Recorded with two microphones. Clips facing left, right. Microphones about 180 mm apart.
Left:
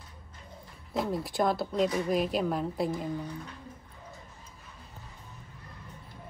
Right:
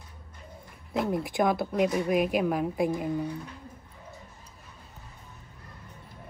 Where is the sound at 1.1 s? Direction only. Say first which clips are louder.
Right 2 dB; 15° right (ahead or behind).